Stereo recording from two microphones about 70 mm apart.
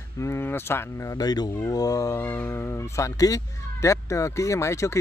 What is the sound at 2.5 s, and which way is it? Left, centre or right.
Speech, left.